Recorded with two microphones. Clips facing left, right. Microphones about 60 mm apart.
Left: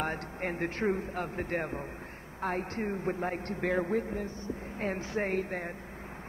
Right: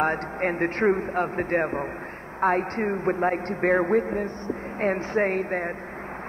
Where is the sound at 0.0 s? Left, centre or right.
Right.